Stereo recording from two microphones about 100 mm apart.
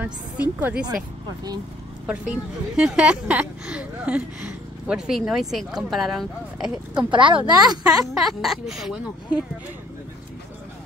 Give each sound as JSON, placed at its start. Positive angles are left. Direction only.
{"t": 0.0, "sound": "speech", "side_deg": -15}
{"t": 2.0, "sound": "speech", "side_deg": -10}
{"t": 7.1, "sound": "a woman's voice", "side_deg": -55}
{"t": 7.5, "sound": "speech", "side_deg": -40}
{"t": 8.2, "sound": "speech", "side_deg": 0}